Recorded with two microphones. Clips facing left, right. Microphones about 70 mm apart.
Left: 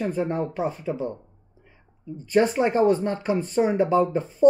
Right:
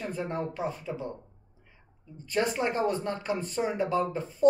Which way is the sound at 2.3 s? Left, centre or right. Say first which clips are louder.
Left 8 dB; left.